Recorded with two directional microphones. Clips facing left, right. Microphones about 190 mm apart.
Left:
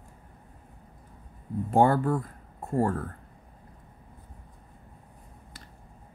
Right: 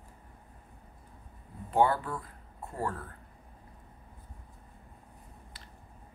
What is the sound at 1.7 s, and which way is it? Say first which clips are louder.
Speech: left 5 dB; 45° left (ahead or behind).